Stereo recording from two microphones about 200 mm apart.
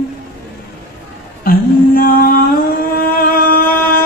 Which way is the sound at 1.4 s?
45° left (ahead or behind).